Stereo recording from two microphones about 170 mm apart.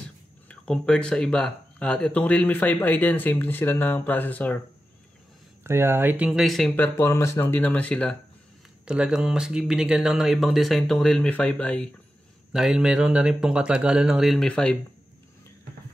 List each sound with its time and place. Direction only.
0.5 s speech: 5° left (ahead or behind)
5.6 s speech: 15° right (ahead or behind)
6.7 s speech: 10° left (ahead or behind)
8.8 s speech: 5° right (ahead or behind)
12.5 s speech: 5° right (ahead or behind)